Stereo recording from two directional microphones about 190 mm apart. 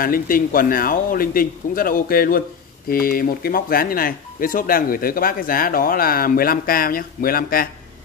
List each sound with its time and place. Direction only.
0.0 s speech: 50° left (ahead or behind)